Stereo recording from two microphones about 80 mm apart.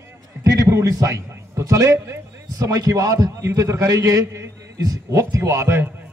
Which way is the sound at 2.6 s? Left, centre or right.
Right.